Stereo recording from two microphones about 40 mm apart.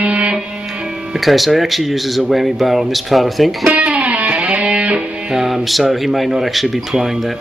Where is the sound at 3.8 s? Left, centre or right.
Right.